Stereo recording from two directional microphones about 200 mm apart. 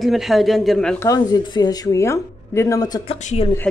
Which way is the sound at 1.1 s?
20° left (ahead or behind).